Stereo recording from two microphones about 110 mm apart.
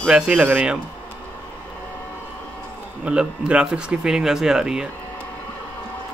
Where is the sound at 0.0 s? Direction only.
10° right (ahead or behind).